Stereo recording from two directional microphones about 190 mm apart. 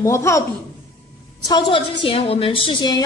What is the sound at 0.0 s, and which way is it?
Speech, 15° left (ahead or behind).